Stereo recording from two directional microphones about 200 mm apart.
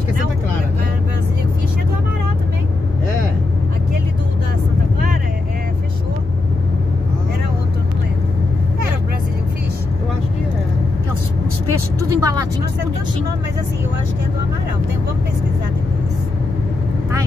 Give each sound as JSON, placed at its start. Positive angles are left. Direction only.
{"t": 12.0, "sound": "vehicle", "side_deg": -15}